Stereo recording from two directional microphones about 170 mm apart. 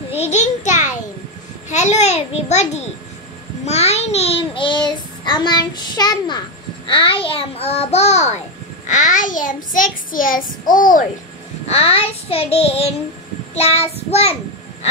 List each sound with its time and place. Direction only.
0.1 s a sound: 40° left (ahead or behind)
1.7 s a child's voice: 40° left (ahead or behind)
3.6 s child singing: 40° left (ahead or behind)
6.9 s a child's voice: 30° left (ahead or behind)
8.8 s child singing: 45° left (ahead or behind)
11.6 s a child's voice: 35° left (ahead or behind)